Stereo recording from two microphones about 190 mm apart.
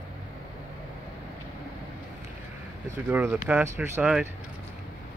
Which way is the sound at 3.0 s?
10° right (ahead or behind).